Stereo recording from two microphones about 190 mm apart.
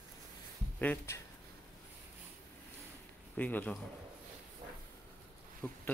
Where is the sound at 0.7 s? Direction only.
10° left (ahead or behind).